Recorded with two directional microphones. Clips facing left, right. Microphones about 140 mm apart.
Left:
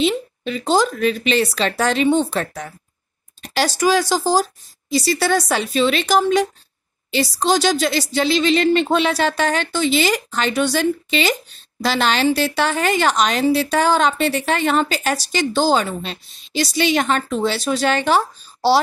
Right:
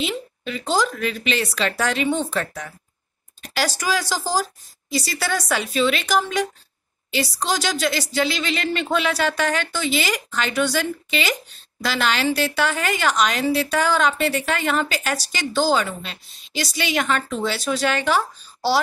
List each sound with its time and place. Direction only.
0.0 s a woman's voice: 30° left (ahead or behind)